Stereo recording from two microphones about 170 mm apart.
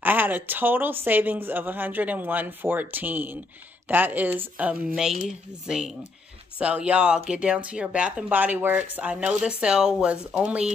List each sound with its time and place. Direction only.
0.0 s speech: 10° right (ahead or behind)
6.6 s speech: 5° right (ahead or behind)